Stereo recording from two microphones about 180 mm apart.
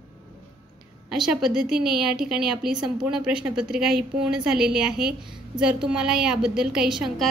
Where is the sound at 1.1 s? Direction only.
Centre (ahead or behind).